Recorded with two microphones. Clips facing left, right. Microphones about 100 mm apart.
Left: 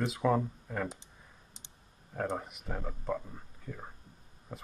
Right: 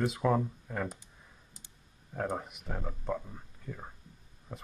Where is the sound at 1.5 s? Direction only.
25° left (ahead or behind).